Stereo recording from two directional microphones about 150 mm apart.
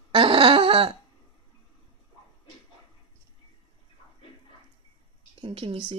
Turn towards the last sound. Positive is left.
turn(degrees=-40)  # may be behind; listen again after turning